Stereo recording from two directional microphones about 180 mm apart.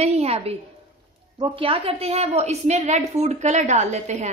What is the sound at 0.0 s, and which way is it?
A woman's voice, 35° right (ahead or behind).